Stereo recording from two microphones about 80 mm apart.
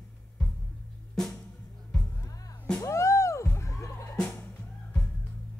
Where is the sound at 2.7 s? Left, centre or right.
Left.